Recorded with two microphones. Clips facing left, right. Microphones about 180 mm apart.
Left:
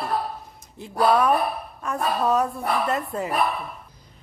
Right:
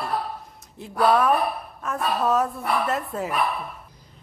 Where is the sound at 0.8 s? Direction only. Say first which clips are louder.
Even; centre (ahead or behind).